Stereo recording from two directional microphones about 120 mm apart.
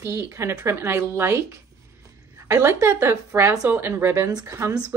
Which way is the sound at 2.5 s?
25° right (ahead or behind).